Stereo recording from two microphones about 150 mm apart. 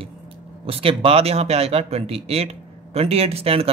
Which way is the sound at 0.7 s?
40° right (ahead or behind).